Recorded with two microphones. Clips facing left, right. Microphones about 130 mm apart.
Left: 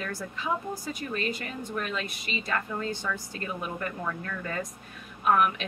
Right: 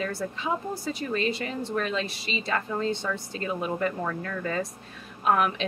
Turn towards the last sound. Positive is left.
turn(degrees=-30)  # may be behind; listen again after turning